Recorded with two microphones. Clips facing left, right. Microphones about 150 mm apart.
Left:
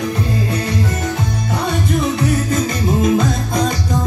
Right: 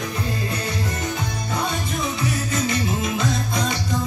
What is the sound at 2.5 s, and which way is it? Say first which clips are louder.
Music: left 6 dB; 45° left (ahead or behind).